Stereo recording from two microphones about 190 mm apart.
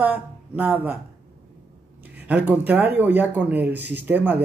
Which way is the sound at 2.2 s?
10° right (ahead or behind).